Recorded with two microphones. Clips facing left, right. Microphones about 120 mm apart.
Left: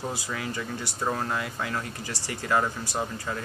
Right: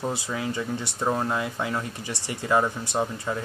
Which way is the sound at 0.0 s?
20° right (ahead or behind).